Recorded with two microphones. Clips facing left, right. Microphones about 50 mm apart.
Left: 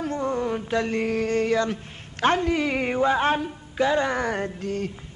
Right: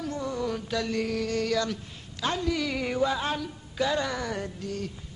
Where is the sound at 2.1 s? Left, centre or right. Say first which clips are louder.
Left 7 dB; left.